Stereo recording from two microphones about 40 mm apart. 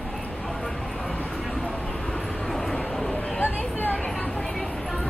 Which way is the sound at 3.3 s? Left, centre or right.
Left.